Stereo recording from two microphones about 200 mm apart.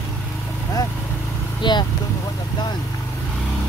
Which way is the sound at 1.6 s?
25° left (ahead or behind).